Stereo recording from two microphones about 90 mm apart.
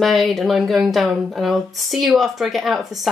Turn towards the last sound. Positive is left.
turn(degrees=0)  # may be behind; listen again after turning